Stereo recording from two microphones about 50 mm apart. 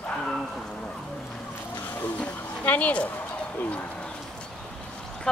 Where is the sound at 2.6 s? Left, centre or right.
Left.